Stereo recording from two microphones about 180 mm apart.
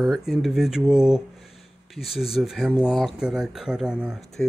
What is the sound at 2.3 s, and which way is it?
Speech, centre (ahead or behind).